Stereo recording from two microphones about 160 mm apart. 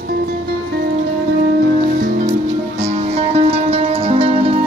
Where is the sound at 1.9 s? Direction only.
60° right (ahead or behind).